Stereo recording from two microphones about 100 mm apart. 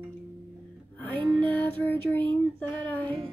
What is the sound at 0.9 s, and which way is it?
Music, 15° left (ahead or behind).